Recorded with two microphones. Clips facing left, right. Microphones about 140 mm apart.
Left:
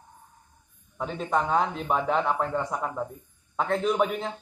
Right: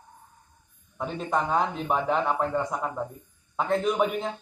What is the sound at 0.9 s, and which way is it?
Speech, 5° right (ahead or behind).